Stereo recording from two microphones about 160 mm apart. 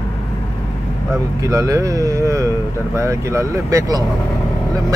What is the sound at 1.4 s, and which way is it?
Speech, 20° right (ahead or behind).